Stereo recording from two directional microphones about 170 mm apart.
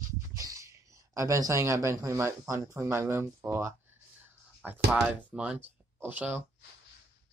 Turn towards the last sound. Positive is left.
turn(degrees=-10)  # may be behind; listen again after turning